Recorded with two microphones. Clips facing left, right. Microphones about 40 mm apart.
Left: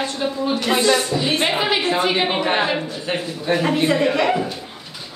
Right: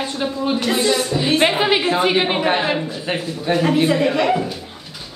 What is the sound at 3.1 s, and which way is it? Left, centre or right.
Speech, centre.